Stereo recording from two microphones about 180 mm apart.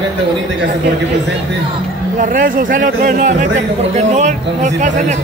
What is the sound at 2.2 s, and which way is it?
Speech, 50° right (ahead or behind).